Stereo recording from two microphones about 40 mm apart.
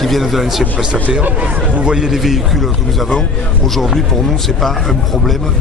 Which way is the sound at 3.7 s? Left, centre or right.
Centre.